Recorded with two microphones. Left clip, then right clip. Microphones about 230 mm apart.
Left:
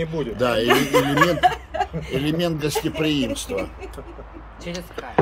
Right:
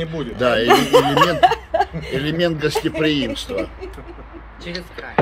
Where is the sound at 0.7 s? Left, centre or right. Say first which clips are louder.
Right 7 dB; right.